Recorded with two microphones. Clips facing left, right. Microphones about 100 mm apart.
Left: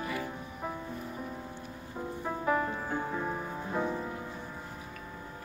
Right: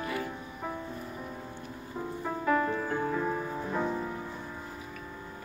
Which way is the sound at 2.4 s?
15° left (ahead or behind).